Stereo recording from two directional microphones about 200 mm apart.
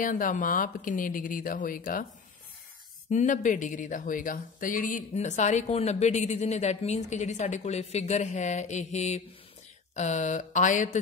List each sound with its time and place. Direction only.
0.0 s speech: 40° left (ahead or behind)
3.1 s speech: 40° left (ahead or behind)